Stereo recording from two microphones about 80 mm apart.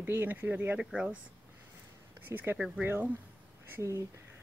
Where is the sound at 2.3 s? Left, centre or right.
Right.